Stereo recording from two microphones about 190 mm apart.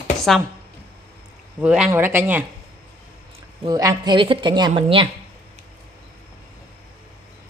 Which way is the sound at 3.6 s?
20° right (ahead or behind).